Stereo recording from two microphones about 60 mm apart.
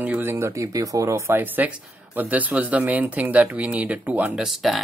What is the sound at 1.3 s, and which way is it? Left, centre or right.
Speech, right.